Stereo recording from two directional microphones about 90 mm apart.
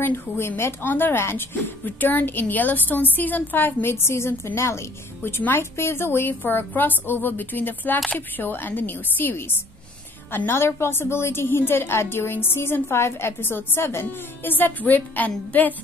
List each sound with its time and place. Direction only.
0.0 s a woman's voice: 25° left (ahead or behind)